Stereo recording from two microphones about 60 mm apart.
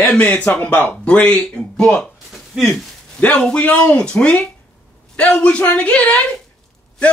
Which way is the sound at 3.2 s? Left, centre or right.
Left.